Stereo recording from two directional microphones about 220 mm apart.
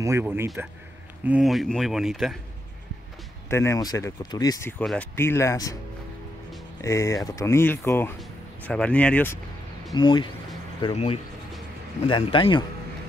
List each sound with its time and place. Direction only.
0.0 s speech: 10° right (ahead or behind)
3.4 s speech: 10° left (ahead or behind)
6.8 s speech: 15° left (ahead or behind)
9.9 s speech: 20° left (ahead or behind)